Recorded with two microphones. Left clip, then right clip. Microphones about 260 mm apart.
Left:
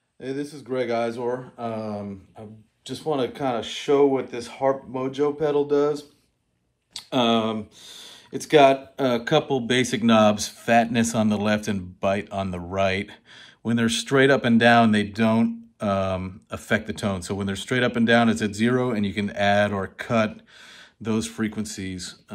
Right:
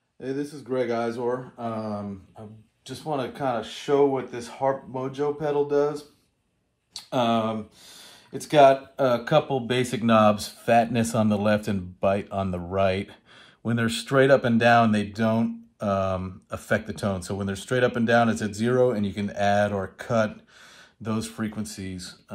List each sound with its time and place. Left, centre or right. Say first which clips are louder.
0.2 s speech: even; right